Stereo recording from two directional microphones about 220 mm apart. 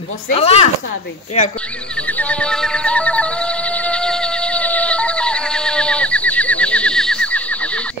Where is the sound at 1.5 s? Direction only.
5° left (ahead or behind).